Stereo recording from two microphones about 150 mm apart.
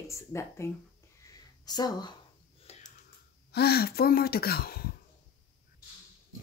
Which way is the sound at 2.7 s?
45° left (ahead or behind).